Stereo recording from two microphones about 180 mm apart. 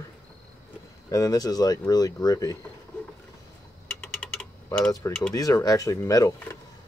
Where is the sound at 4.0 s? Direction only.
5° left (ahead or behind).